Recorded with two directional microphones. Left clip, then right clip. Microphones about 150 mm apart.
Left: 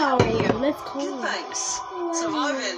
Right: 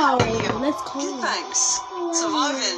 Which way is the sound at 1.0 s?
35° left (ahead or behind).